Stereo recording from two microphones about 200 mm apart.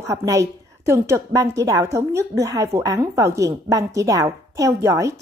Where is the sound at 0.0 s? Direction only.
15° right (ahead or behind).